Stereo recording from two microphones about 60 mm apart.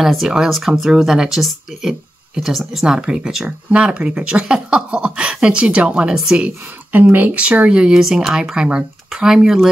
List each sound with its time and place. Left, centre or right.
0.0 s speech: centre
3.4 s speech: right
6.9 s speech: right
7.5 s speech: centre